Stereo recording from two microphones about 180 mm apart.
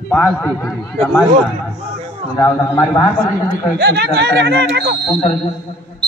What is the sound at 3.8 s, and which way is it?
Speech, 70° right (ahead or behind).